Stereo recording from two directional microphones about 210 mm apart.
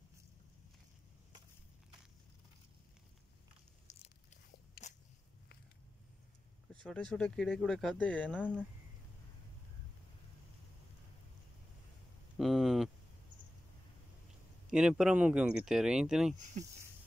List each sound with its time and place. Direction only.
3.9 s biting: 35° left (ahead or behind)
4.8 s biting: 45° left (ahead or behind)
6.7 s speech: 5° left (ahead or behind)
12.4 s a sound: centre (ahead or behind)
14.7 s speech: 5° right (ahead or behind)